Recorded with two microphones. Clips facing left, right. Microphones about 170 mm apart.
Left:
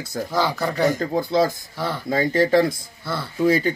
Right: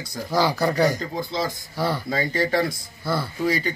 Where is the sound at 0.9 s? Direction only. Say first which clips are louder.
Left 7 dB; 50° left (ahead or behind).